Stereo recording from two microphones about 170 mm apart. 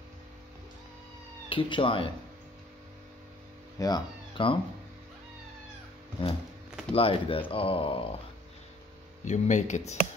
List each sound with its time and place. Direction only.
1.5 s speech: 30° left (ahead or behind)
3.8 s speech: 25° left (ahead or behind)
6.2 s speech: 30° left (ahead or behind)
9.2 s speech: 45° left (ahead or behind)